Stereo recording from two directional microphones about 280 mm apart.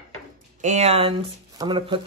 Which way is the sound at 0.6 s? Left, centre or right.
Right.